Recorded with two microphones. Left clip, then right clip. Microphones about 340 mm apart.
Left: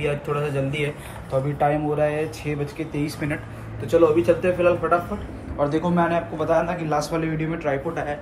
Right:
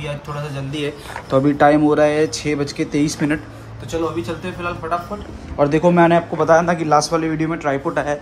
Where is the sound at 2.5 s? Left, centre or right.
Right.